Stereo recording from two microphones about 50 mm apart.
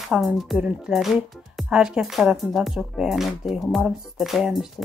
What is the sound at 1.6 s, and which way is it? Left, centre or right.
Speech, centre.